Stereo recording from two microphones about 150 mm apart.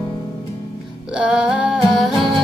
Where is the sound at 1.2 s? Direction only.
5° right (ahead or behind).